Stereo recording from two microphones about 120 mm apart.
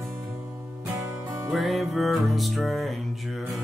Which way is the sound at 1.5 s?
Centre (ahead or behind).